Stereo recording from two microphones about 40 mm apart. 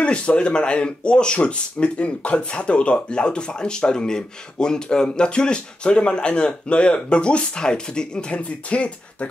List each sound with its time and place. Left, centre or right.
0.0 s speech: left